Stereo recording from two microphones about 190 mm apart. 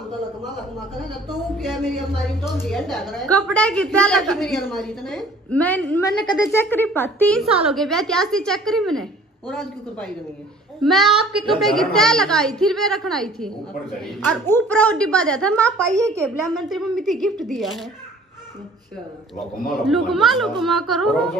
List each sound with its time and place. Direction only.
1.6 s a woman's voice: centre (ahead or behind)
15.9 s a woman's voice: 15° right (ahead or behind)
16.4 s a woman's voice: centre (ahead or behind)
19.7 s a woman's voice: centre (ahead or behind)